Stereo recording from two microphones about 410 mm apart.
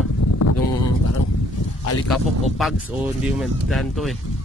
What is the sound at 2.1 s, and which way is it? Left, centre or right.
Speech, centre.